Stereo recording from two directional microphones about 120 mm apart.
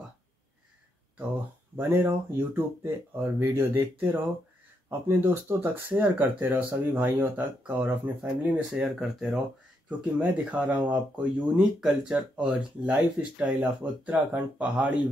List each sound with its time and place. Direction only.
1.8 s speech: 20° right (ahead or behind)
8.7 s speech: 5° right (ahead or behind)